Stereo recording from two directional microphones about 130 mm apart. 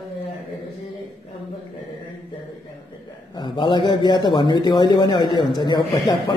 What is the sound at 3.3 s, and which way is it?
A man's voice, 35° left (ahead or behind).